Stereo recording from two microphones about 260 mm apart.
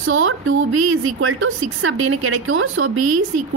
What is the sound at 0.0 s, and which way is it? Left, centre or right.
A woman's voice, right.